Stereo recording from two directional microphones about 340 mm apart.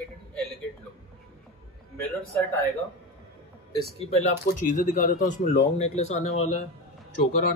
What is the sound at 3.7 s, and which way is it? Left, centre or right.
Speech, centre.